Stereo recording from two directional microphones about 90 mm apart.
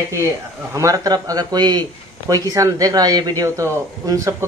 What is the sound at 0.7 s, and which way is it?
A man's voice, 40° right (ahead or behind).